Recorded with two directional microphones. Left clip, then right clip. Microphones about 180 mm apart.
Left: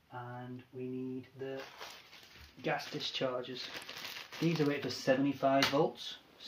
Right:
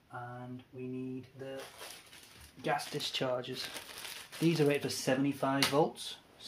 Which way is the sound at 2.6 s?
45° right (ahead or behind).